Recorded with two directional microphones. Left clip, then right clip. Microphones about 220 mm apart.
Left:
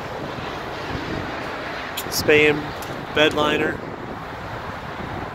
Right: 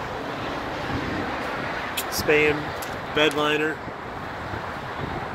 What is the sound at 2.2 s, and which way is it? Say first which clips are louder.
Speech: left 4 dB; 30° left (ahead or behind).